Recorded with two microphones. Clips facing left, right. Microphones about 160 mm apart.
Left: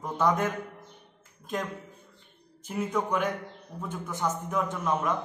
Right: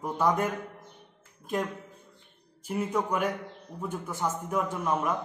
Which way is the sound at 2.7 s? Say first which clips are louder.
Even; 10° right (ahead or behind).